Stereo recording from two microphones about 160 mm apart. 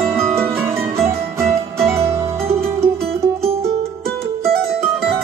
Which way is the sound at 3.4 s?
40° right (ahead or behind).